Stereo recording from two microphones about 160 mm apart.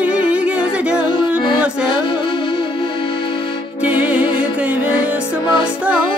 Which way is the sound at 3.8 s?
10° right (ahead or behind).